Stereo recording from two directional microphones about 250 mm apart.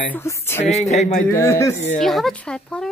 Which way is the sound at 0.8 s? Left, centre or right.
Left.